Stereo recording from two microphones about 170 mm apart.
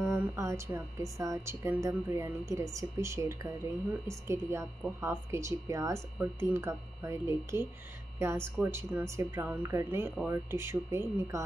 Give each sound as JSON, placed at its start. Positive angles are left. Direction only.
{"t": 0.0, "sound": "speech", "side_deg": -15}
{"t": 8.6, "sound": "speech", "side_deg": -15}